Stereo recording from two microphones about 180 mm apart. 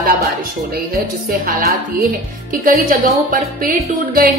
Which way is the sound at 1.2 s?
55° right (ahead or behind).